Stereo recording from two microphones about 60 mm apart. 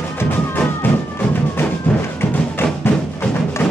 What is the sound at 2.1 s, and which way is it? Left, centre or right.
Music, left.